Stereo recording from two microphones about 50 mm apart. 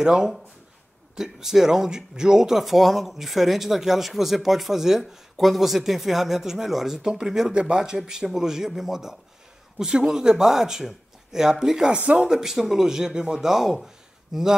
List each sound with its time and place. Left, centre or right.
0.0 s speech: centre
12.0 s speech: right
12.3 s speech: centre